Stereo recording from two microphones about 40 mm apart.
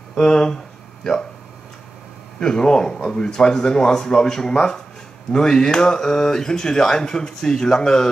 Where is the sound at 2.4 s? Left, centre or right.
Centre.